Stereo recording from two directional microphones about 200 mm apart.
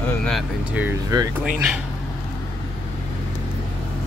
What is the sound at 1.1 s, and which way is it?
Speech, 20° right (ahead or behind).